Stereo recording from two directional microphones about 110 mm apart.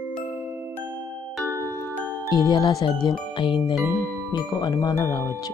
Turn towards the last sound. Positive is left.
turn(degrees=40)  # may be behind; listen again after turning